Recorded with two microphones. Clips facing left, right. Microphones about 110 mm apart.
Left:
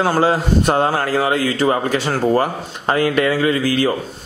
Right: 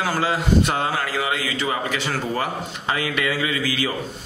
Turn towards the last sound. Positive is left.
turn(degrees=45)  # may be behind; listen again after turning